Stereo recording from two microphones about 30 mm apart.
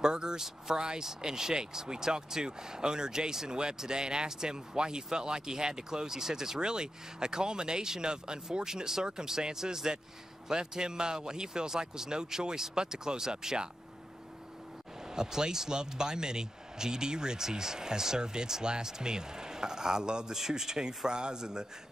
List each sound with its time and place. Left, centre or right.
0.0 s speech: right
15.0 s speech: right
20.3 s speech: centre